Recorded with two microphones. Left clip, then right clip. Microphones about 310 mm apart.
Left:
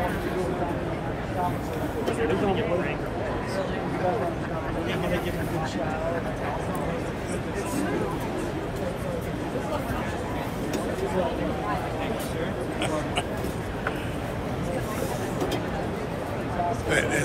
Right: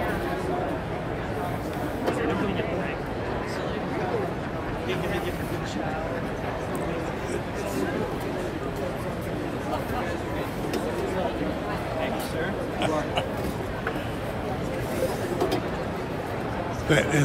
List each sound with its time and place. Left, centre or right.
16.9 s a man's voice: right